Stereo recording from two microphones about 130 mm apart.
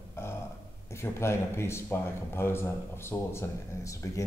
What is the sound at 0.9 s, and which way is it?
A man's voice, 20° left (ahead or behind).